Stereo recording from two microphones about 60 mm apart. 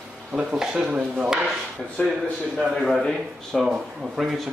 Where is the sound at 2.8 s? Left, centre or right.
Centre.